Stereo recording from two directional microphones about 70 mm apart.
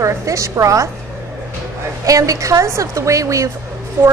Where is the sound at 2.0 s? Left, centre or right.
Right.